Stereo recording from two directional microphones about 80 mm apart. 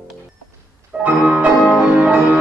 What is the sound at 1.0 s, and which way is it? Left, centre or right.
Music, centre.